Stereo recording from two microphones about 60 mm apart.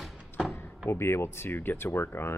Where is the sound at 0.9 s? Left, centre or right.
Left.